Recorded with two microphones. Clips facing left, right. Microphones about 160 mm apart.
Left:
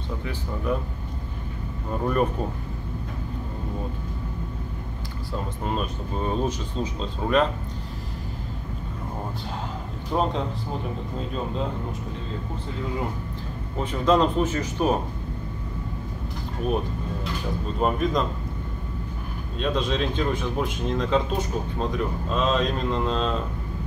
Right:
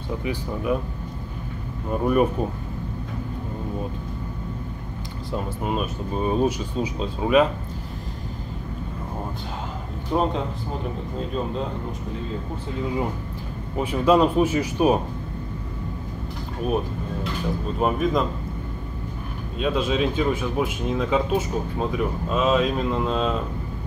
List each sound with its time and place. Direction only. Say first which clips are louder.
0.2 s speech: right 3 dB; 15° right (ahead or behind)
1.9 s speech: right 4 dB; 10° right (ahead or behind)
5.3 s speech: right 3 dB; 10° right (ahead or behind)
10.1 s speech: right 2 dB; 5° right (ahead or behind)
13.7 s speech: right 3 dB; 10° right (ahead or behind)
16.6 s music: right 1 dB; 5° right (ahead or behind)
17.7 s speech: right 1 dB; 5° right (ahead or behind)
19.6 s speech: right 3 dB; 5° right (ahead or behind)